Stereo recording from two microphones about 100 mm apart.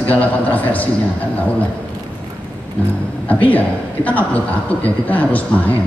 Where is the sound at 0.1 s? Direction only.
15° left (ahead or behind).